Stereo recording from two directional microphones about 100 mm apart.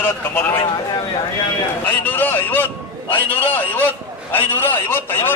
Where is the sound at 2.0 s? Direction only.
20° left (ahead or behind).